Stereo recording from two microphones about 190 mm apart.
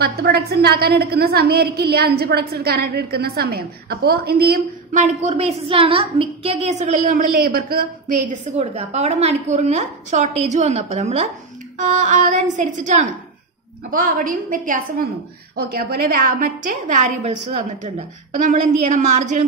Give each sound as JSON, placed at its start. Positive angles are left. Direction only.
{"t": 0.0, "sound": "a woman's voice", "side_deg": -55}
{"t": 4.9, "sound": "a woman's voice", "side_deg": -40}
{"t": 8.5, "sound": "a woman's voice", "side_deg": -35}